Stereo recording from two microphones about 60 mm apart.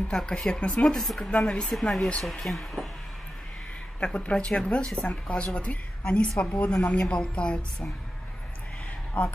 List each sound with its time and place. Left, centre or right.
0.1 s a woman's voice: centre
1.7 s speech: centre
4.0 s a woman's voice: left
9.1 s speech: left